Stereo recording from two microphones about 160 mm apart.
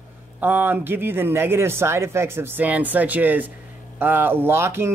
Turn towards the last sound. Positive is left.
turn(degrees=-15)  # may be behind; listen again after turning